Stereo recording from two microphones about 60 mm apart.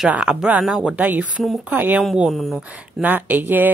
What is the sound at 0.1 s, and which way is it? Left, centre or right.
A woman's voice, centre.